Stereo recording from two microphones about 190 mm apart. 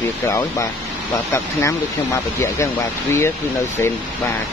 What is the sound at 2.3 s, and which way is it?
Speech, 15° left (ahead or behind).